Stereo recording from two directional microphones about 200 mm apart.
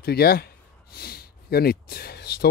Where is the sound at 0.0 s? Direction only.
50° left (ahead or behind).